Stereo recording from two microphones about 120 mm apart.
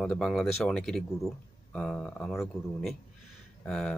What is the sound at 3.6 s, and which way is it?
Speech, 5° left (ahead or behind).